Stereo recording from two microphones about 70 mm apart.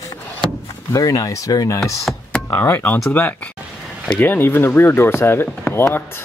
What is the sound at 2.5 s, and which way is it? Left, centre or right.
Speech, left.